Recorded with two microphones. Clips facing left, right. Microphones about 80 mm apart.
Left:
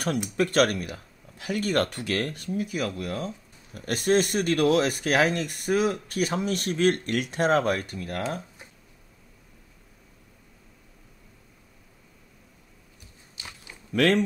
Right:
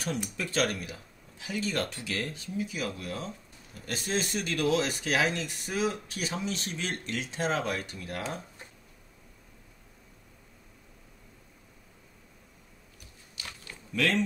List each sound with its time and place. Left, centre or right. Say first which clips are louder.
0.4 s speech: left 9 dB; left
13.4 s a sound: even; centre
13.9 s speech: left 6 dB; left